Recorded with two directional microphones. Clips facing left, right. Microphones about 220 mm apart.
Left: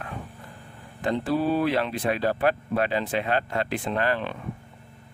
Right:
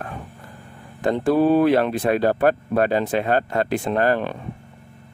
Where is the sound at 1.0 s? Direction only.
50° right (ahead or behind).